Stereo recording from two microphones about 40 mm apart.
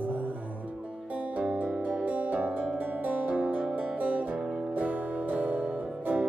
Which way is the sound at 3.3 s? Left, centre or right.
Right.